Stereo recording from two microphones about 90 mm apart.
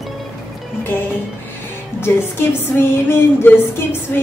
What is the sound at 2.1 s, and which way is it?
Music, 30° left (ahead or behind).